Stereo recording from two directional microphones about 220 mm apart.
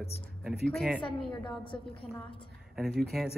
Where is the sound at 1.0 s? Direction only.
20° left (ahead or behind).